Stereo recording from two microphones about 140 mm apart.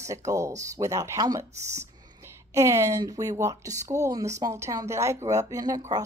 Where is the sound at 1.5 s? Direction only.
55° right (ahead or behind).